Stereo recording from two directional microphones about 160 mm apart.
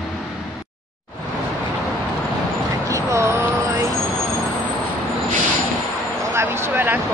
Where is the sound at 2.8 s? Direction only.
20° right (ahead or behind).